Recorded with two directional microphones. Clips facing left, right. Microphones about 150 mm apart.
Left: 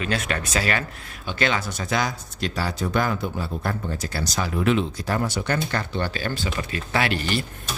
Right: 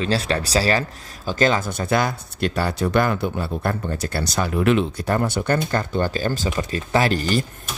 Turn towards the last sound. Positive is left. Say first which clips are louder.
# right 4 dB
turn(degrees=-40)  # may be behind; listen again after turning